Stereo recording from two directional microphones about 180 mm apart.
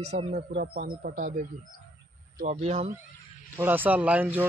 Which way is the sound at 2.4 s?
40° right (ahead or behind).